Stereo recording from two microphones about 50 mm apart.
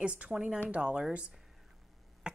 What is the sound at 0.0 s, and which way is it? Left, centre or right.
Speech, right.